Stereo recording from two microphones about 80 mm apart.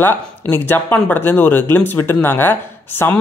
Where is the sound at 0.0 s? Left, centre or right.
Left.